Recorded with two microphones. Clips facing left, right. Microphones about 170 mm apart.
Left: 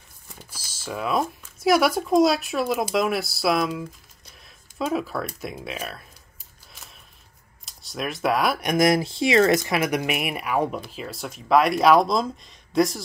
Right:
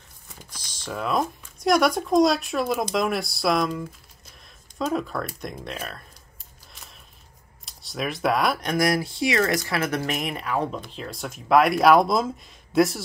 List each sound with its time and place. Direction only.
0.5 s speech: 5° left (ahead or behind)
7.6 s speech: centre (ahead or behind)
8.6 s speech: 20° left (ahead or behind); by 13.0 s centre (ahead or behind)